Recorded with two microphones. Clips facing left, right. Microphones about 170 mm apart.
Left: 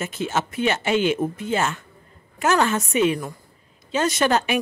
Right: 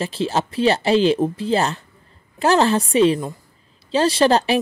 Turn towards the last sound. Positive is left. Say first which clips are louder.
# right 4 dB
turn(degrees=-35)  # may be behind; listen again after turning